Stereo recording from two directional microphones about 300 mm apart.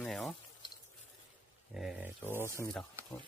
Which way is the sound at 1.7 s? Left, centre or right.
Centre.